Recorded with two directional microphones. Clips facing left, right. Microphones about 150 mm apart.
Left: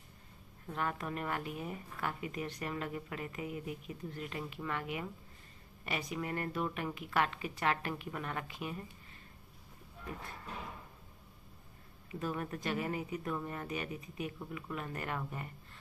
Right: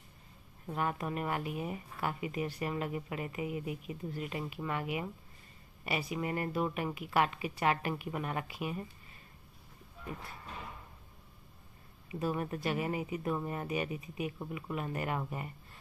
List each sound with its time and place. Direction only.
0.7 s a woman's voice: 15° right (ahead or behind)
12.1 s a woman's voice: 15° right (ahead or behind)